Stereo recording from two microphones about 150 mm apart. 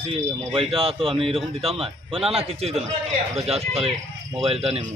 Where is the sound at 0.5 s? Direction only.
40° right (ahead or behind).